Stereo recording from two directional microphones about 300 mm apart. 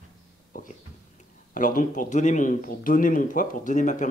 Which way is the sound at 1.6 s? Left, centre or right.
Left.